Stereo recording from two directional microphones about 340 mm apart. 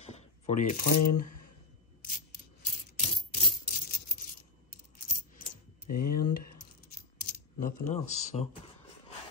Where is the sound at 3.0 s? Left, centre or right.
Centre.